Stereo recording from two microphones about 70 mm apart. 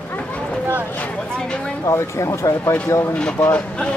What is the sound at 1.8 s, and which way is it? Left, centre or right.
Speech, left.